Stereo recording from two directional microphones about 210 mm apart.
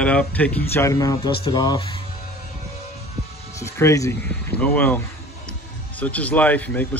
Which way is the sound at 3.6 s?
15° left (ahead or behind).